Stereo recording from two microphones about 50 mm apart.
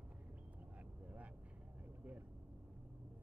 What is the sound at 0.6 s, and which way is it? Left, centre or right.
Vehicle, right.